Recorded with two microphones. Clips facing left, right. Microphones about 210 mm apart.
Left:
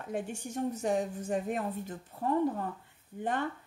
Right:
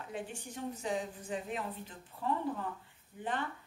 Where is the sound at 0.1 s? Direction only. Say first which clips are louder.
Left 8 dB; 45° left (ahead or behind).